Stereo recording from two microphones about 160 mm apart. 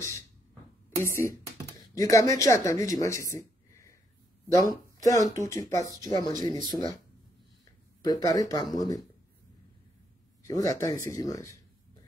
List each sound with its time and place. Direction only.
0.9 s speech: 15° left (ahead or behind)
8.0 s speech: 25° left (ahead or behind)
10.4 s speech: 20° left (ahead or behind)